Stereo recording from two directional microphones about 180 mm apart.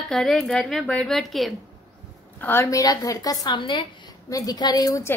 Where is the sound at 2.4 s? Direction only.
10° left (ahead or behind).